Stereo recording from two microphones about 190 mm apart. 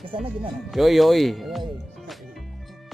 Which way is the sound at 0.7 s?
Centre (ahead or behind).